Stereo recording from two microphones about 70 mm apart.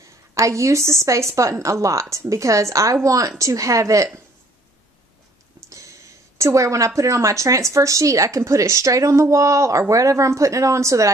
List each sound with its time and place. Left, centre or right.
0.3 s speech: right
6.3 s a woman's voice: right